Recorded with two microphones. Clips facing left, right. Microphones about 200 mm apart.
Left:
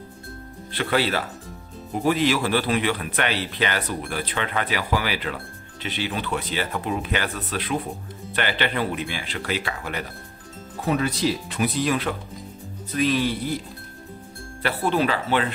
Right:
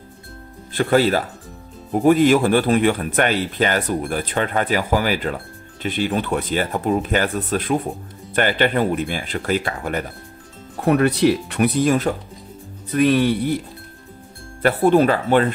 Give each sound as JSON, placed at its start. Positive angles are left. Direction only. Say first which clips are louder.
{"t": 0.7, "sound": "speech", "louder": "right 7 dB", "side_deg": -45}
{"t": 10.8, "sound": "speech", "louder": "right 7 dB", "side_deg": -60}
{"t": 12.9, "sound": "speech", "louder": "right 6 dB", "side_deg": -55}
{"t": 14.6, "sound": "speech", "louder": "right 8 dB", "side_deg": -50}